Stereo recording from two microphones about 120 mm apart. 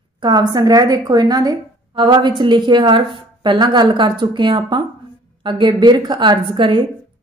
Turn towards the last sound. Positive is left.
turn(degrees=-40)  # may be behind; listen again after turning